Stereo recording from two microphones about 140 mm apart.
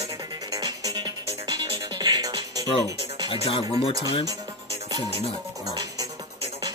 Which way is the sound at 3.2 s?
40° left (ahead or behind).